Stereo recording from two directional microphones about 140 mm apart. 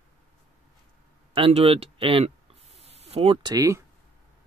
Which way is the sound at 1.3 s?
40° right (ahead or behind).